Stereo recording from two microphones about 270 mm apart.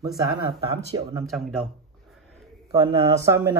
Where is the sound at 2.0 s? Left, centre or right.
Centre.